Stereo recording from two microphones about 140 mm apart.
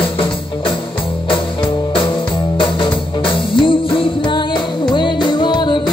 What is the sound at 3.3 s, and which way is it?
Music, 35° left (ahead or behind).